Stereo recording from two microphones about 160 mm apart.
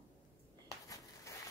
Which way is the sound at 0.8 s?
20° left (ahead or behind).